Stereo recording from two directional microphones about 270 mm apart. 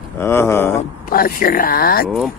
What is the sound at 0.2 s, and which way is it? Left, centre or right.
Speech, centre.